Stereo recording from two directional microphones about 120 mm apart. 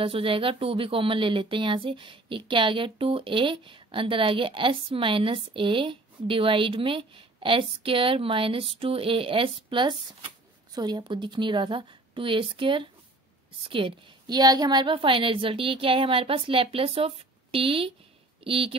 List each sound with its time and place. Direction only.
0.0 s speech: 50° right (ahead or behind)